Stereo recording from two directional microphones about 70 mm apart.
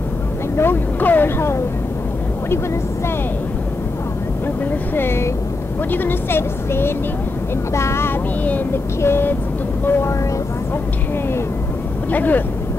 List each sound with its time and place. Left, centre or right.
0.6 s speech: left
4.9 s a woman's voice: left
12.1 s speech: left